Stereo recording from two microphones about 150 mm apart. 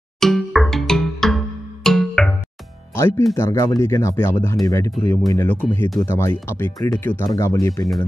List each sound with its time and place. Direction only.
0.2 s music: centre (ahead or behind)
3.0 s speech: 20° left (ahead or behind)